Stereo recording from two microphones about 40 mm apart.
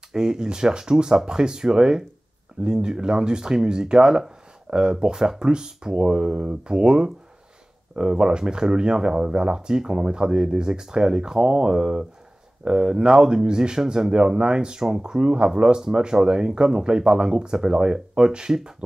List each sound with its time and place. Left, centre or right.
0.1 s speech: centre